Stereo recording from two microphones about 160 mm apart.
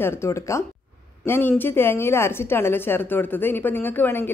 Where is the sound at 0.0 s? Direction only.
15° left (ahead or behind).